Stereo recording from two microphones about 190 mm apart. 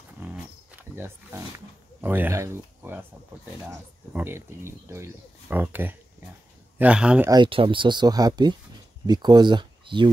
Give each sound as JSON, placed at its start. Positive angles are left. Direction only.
{"t": 0.2, "sound": "a sound", "side_deg": -10}
{"t": 0.9, "sound": "speech", "side_deg": -15}
{"t": 4.1, "sound": "speech", "side_deg": -10}
{"t": 7.2, "sound": "speech", "side_deg": -25}